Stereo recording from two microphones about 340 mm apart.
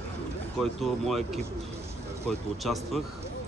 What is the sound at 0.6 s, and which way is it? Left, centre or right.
Speech, centre.